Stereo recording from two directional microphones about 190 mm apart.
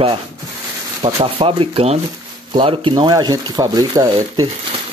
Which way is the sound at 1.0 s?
30° right (ahead or behind).